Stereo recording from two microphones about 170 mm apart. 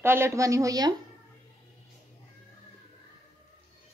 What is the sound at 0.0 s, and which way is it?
Speech, 15° right (ahead or behind).